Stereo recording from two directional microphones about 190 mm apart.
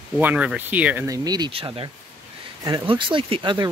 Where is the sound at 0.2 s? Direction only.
5° right (ahead or behind).